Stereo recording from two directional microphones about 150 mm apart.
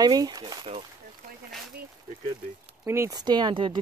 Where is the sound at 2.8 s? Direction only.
15° right (ahead or behind).